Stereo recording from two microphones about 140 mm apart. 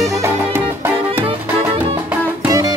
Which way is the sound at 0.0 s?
20° right (ahead or behind).